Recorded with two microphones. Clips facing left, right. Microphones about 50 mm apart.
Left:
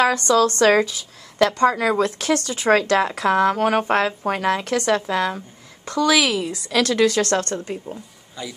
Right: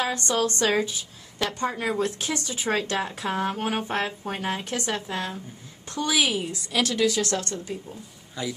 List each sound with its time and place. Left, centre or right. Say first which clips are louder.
0.0 s a woman's voice: left 8 dB; left
8.4 s speech: right 2 dB; centre